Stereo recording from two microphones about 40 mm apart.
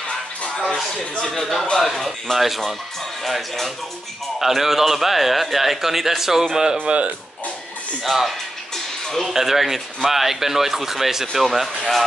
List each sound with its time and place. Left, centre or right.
1.3 s a man's voice: centre
6.9 s speech: right
8.0 s a man's voice: centre